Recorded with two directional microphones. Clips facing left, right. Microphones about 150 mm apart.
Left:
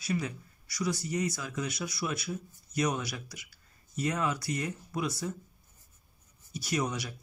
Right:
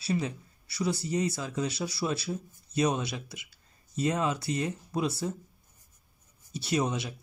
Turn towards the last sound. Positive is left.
turn(degrees=-25)  # may be behind; listen again after turning